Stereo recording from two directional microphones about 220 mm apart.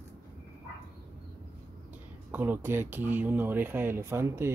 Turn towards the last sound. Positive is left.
turn(degrees=-10)  # may be behind; listen again after turning